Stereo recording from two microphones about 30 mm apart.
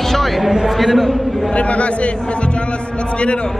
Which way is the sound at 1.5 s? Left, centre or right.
Left.